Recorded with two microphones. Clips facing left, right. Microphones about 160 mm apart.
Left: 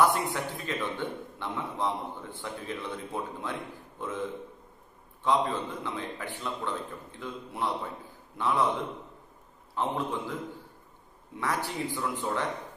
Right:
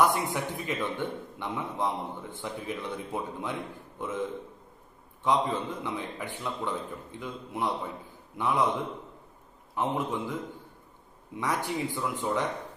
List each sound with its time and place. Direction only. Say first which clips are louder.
0.0 s a man's voice: even; 15° right (ahead or behind)
5.2 s a man's voice: even; 15° right (ahead or behind)